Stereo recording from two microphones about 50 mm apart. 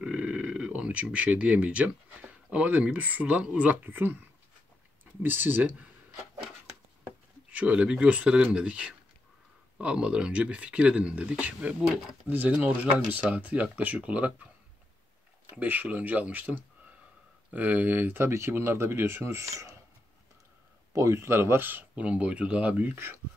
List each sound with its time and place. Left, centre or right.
0.0 s a sound: right
1.1 s speech: right
3.9 s speech: right
7.5 s speech: right
12.3 s speech: right
15.5 s speech: right
18.2 s speech: right
19.3 s speech: right
20.9 s speech: right
21.9 s speech: right
22.9 s speech: right